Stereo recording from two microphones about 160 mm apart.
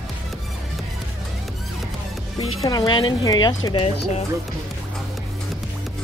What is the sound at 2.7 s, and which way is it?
Speech, 30° left (ahead or behind).